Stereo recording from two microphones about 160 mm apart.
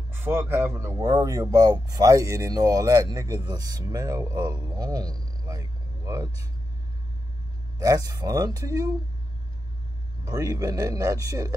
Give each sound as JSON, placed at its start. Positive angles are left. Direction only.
{"t": 0.1, "sound": "speech", "side_deg": -15}
{"t": 7.8, "sound": "speech", "side_deg": -25}
{"t": 10.2, "sound": "speech", "side_deg": -25}